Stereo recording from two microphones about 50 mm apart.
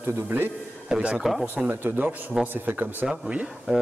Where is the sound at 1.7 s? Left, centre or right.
Right.